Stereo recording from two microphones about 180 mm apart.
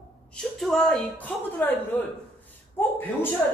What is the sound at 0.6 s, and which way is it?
A man's voice, centre (ahead or behind).